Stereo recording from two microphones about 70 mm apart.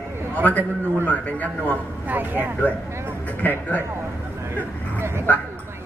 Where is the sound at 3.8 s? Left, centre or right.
Right.